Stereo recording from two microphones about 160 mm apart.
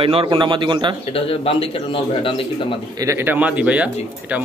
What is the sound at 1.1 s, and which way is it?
Speech, 35° left (ahead or behind).